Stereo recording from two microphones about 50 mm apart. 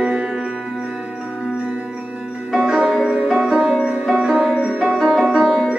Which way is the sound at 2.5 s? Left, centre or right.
Centre.